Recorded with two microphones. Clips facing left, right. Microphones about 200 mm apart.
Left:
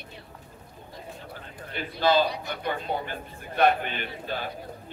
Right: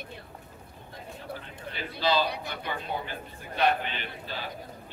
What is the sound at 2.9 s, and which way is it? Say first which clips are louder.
Speech: left 3 dB; 55° left (ahead or behind).